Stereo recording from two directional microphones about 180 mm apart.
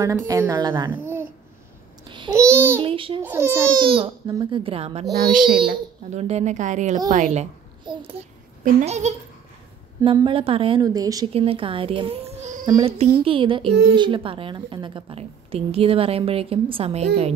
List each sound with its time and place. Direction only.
0.3 s speech: 20° right (ahead or behind)
0.9 s babbling: 15° right (ahead or behind)
2.0 s babbling: 25° right (ahead or behind)
2.8 s a woman's voice: 30° right (ahead or behind)
3.2 s speech: 15° right (ahead or behind)
3.8 s speech: 30° right (ahead or behind)
5.1 s speech: 60° right (ahead or behind)
6.1 s a woman's voice: 40° right (ahead or behind)
7.8 s a child's voice: 30° right (ahead or behind)
10.1 s speech: 30° right (ahead or behind)
11.3 s speech: 30° right (ahead or behind)
12.6 s a woman's voice: 20° right (ahead or behind)